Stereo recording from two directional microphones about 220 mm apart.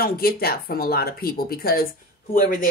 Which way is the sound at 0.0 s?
45° left (ahead or behind).